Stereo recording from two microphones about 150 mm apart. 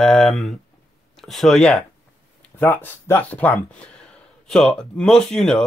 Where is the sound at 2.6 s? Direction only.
15° left (ahead or behind).